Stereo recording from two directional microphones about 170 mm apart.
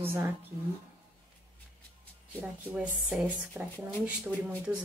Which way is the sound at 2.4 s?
10° right (ahead or behind).